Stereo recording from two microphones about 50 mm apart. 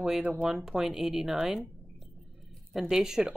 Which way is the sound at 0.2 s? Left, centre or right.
Right.